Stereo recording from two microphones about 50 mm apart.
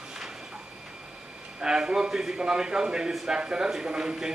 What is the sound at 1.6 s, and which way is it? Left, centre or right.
A man's voice, centre.